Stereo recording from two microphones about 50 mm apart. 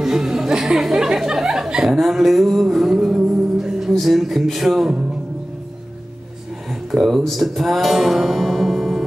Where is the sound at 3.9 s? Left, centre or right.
Centre.